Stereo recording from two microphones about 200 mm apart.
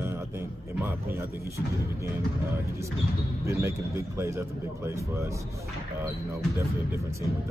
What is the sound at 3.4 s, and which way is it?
A man's voice, 15° right (ahead or behind).